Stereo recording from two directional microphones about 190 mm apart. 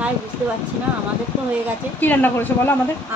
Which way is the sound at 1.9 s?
10° left (ahead or behind).